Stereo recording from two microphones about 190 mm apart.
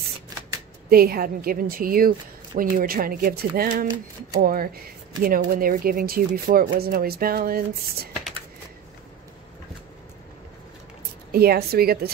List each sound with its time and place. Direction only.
0.8 s speech: 55° right (ahead or behind)
11.3 s speech: 55° right (ahead or behind)